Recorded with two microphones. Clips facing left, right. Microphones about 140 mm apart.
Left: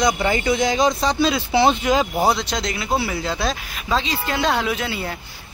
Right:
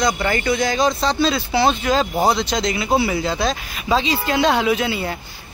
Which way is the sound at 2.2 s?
5° left (ahead or behind).